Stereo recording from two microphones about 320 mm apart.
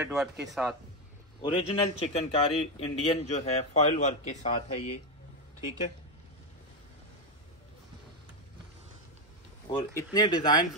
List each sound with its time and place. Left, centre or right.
0.0 s speech: centre
1.4 s speech: centre
9.7 s speech: centre